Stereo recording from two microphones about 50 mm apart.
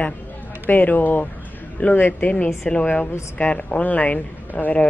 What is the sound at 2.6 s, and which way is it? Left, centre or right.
A woman's voice, left.